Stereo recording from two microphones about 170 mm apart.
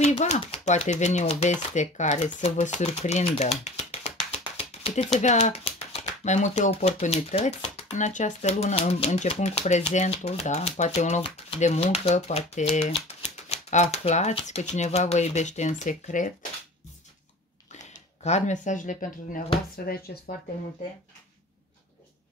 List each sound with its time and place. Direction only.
0.0 s speech: 40° left (ahead or behind)
17.7 s speech: 40° left (ahead or behind)